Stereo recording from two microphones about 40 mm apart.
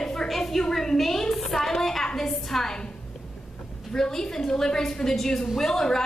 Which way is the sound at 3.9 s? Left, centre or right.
Centre.